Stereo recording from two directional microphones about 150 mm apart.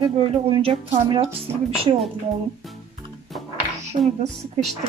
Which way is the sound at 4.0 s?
55° right (ahead or behind).